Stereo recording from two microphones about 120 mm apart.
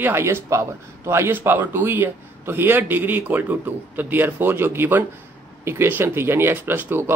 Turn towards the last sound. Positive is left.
turn(degrees=-20)  # may be behind; listen again after turning